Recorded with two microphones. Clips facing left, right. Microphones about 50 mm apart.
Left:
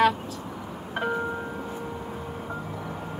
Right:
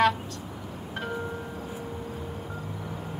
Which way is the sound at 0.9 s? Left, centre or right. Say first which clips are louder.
Left 6 dB; centre.